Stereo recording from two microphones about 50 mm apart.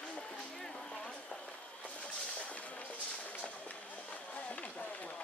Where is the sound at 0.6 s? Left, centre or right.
Centre.